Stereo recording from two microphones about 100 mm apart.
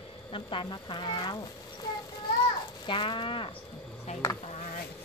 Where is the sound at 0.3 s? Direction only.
55° left (ahead or behind).